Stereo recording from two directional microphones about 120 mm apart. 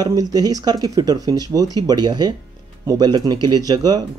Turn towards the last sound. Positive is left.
turn(degrees=-35)  # may be behind; listen again after turning